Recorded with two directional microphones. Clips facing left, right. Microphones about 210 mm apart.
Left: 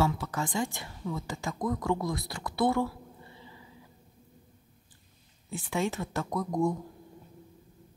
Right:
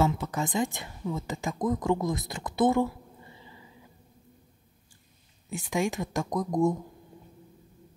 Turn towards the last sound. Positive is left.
turn(degrees=-20)  # may be behind; listen again after turning